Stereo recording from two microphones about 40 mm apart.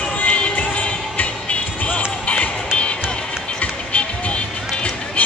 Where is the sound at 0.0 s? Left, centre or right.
Left.